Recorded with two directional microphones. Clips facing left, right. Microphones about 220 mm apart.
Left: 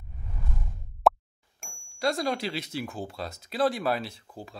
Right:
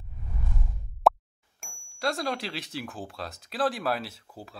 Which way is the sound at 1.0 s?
Centre (ahead or behind).